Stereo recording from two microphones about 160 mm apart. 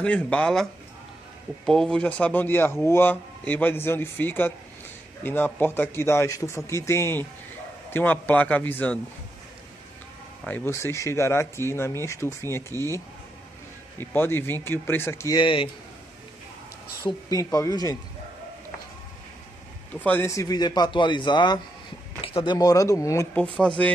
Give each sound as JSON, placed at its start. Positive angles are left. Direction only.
{"t": 0.0, "sound": "a man's voice", "side_deg": 5}
{"t": 1.7, "sound": "a man's voice", "side_deg": 5}
{"t": 10.4, "sound": "a man's voice", "side_deg": 15}
{"t": 17.0, "sound": "a man's voice", "side_deg": 20}
{"t": 19.9, "sound": "a man's voice", "side_deg": 10}
{"t": 23.3, "sound": "a man's voice", "side_deg": 5}